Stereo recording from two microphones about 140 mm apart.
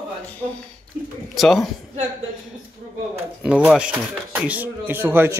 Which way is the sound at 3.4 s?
5° right (ahead or behind).